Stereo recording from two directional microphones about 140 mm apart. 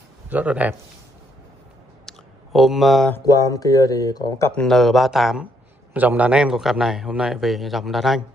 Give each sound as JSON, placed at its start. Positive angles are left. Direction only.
{"t": 0.3, "sound": "a man's voice", "side_deg": -10}
{"t": 2.0, "sound": "a sound", "side_deg": 0}
{"t": 3.3, "sound": "speech", "side_deg": 25}
{"t": 4.6, "sound": "a man's voice", "side_deg": 0}